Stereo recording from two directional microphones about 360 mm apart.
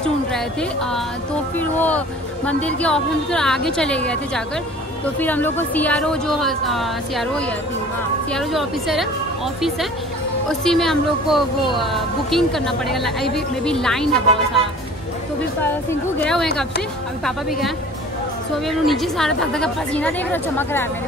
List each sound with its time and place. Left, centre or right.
0.0 s a woman's voice: centre
5.2 s a woman's voice: centre
10.5 s a woman's voice: centre
16.3 s a woman's voice: centre